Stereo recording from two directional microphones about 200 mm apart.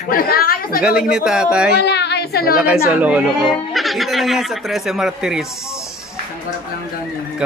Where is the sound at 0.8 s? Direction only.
5° right (ahead or behind).